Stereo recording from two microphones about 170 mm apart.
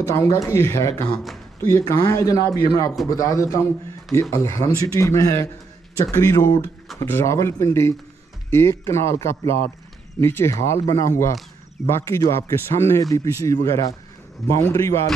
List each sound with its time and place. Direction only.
0.0 s speech: 15° left (ahead or behind)